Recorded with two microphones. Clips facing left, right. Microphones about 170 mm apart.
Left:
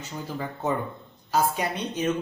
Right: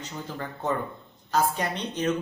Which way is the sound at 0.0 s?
10° left (ahead or behind).